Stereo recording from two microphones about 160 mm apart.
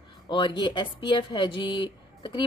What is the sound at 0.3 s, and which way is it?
Speech, 30° left (ahead or behind).